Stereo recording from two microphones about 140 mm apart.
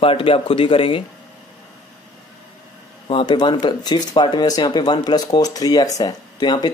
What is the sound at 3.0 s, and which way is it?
Speech, 35° left (ahead or behind).